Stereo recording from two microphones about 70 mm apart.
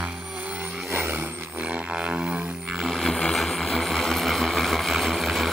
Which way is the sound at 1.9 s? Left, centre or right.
Centre.